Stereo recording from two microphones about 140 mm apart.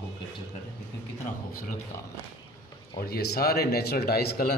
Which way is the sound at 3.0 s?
90° left.